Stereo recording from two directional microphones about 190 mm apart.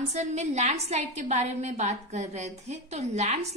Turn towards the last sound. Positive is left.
turn(degrees=-35)  # may be behind; listen again after turning